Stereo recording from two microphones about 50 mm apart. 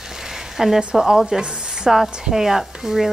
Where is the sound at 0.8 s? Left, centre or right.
Centre.